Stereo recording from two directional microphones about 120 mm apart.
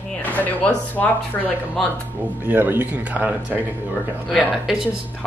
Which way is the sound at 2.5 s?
15° right (ahead or behind).